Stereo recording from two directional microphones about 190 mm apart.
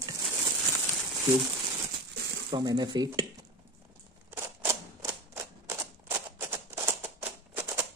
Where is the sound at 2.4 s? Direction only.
20° right (ahead or behind).